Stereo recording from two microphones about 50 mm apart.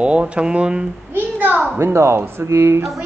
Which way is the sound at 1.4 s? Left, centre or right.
Right.